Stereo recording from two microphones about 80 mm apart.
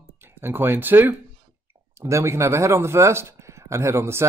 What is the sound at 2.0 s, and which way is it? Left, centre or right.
Speech, right.